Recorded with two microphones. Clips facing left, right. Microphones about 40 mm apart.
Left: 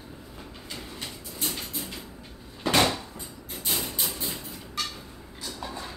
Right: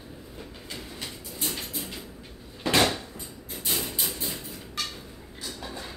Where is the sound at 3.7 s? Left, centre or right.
Centre.